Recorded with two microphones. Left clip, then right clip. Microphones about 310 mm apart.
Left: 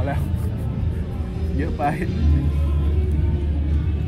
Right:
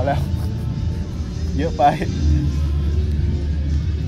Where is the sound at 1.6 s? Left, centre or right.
Right.